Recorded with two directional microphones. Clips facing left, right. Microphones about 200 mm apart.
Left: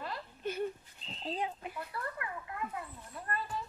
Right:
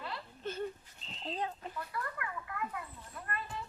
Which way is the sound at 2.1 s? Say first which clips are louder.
Even; 25° left (ahead or behind).